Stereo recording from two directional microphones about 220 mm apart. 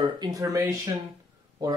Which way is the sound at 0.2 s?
15° right (ahead or behind).